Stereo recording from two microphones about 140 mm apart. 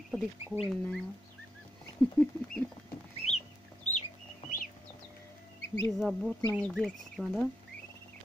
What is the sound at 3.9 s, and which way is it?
Chicken, 55° left (ahead or behind).